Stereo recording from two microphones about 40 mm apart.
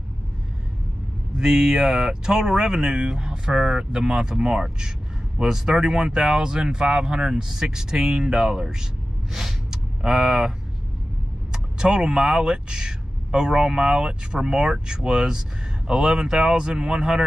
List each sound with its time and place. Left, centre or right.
1.4 s speech: centre
9.3 s gasp: centre
11.5 s speech: centre